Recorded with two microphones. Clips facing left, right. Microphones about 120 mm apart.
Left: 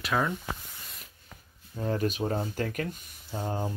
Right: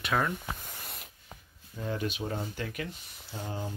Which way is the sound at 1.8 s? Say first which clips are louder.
Left 5 dB; 40° left (ahead or behind).